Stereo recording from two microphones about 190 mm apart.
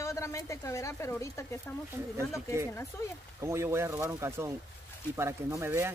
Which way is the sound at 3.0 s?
15° left (ahead or behind).